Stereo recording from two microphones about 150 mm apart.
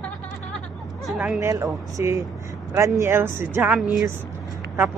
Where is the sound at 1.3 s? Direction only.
20° right (ahead or behind).